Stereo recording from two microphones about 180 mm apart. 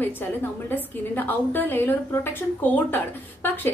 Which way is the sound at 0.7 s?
10° left (ahead or behind).